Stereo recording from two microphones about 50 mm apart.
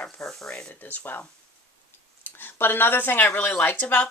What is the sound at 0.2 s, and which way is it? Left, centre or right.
Speech, centre.